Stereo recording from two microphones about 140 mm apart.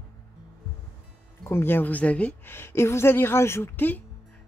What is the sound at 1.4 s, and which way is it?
A woman's voice, 15° left (ahead or behind).